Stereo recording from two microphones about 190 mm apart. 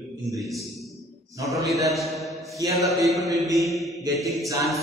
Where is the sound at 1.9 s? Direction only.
Centre (ahead or behind).